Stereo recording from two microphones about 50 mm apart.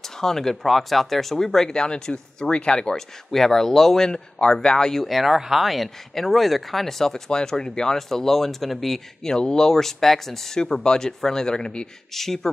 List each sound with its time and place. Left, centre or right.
0.2 s speech: centre
3.3 s speech: centre
12.1 s speech: centre